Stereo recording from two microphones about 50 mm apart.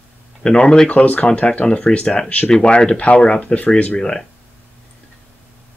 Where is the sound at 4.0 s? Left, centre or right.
Centre.